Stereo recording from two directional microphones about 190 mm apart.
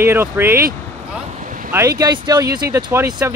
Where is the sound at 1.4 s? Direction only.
45° right (ahead or behind).